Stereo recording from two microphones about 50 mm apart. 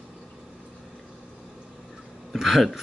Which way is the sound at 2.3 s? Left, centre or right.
Centre.